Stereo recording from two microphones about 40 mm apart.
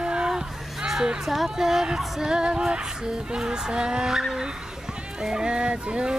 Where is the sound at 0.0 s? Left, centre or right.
Right.